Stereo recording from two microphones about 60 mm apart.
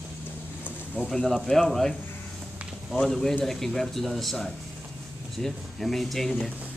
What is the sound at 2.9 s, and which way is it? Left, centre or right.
A man's voice, centre.